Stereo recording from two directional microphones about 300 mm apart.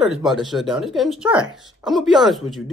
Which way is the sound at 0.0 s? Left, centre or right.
Centre.